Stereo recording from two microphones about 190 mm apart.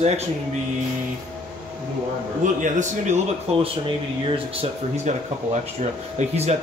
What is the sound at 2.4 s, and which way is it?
Speech, 40° right (ahead or behind).